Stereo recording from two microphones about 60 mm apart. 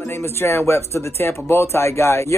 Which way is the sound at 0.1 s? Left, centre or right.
Left.